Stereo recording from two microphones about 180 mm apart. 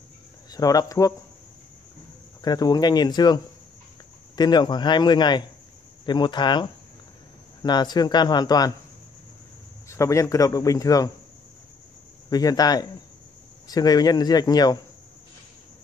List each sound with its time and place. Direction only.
0.5 s a man's voice: 20° left (ahead or behind)
2.4 s a man's voice: 20° left (ahead or behind)
4.4 s a man's voice: 25° left (ahead or behind)
9.8 s a man's voice: 15° left (ahead or behind)
12.3 s a man's voice: 20° left (ahead or behind)